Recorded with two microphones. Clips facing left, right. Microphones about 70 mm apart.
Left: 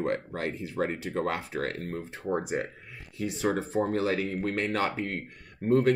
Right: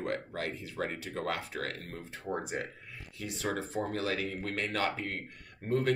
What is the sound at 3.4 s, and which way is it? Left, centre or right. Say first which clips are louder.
Speech: left 6 dB; left.